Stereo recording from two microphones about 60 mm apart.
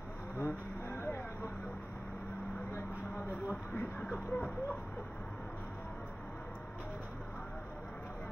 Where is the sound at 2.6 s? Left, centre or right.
Left.